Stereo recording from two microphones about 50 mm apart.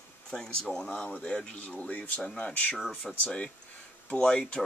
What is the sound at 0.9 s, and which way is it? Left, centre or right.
Speech, left.